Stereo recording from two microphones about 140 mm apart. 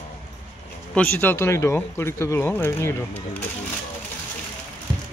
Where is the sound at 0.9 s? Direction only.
10° left (ahead or behind).